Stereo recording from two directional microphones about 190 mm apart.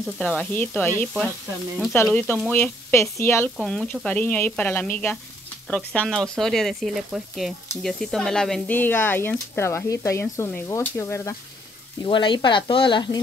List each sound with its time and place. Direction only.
0.0 s speech: 5° left (ahead or behind)
12.0 s speech: 25° left (ahead or behind)